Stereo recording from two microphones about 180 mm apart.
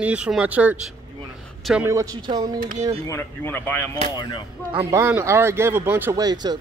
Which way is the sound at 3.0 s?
15° left (ahead or behind).